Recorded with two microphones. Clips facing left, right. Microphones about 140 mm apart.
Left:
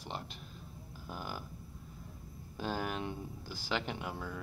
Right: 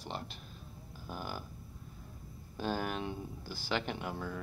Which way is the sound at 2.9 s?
25° right (ahead or behind).